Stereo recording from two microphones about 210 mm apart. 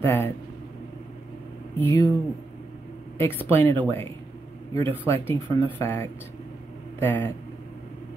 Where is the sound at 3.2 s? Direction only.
10° left (ahead or behind).